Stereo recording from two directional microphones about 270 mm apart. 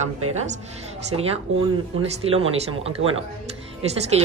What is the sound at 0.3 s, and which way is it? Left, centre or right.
Speech, right.